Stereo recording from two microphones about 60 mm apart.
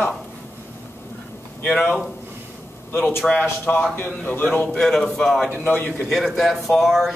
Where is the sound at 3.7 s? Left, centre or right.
Left.